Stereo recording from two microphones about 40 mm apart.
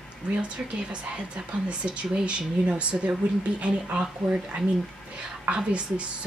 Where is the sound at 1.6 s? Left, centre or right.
Right.